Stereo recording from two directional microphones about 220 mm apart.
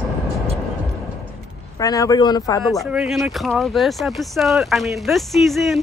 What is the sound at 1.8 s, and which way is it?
Speech, 15° left (ahead or behind).